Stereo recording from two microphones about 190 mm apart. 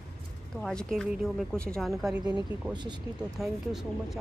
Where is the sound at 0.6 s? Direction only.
Centre (ahead or behind).